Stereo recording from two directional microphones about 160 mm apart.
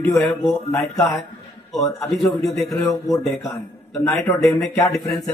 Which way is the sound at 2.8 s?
20° left (ahead or behind).